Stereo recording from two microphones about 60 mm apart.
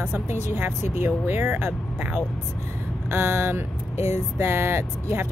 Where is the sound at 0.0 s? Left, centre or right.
Right.